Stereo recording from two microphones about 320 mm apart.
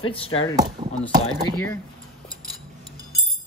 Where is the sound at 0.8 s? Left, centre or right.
Centre.